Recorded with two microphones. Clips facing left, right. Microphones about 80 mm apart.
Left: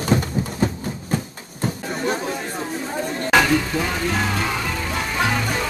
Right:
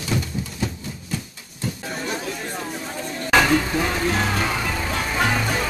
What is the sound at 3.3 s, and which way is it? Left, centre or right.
Music, centre.